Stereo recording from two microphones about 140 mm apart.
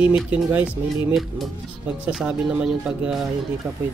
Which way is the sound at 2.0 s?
10° right (ahead or behind).